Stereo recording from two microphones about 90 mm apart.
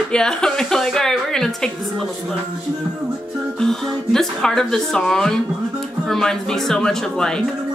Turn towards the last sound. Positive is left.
turn(degrees=5)  # may be behind; listen again after turning